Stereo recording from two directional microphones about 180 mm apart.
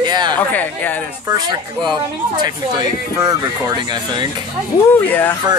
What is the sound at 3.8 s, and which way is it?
Speech, 25° right (ahead or behind).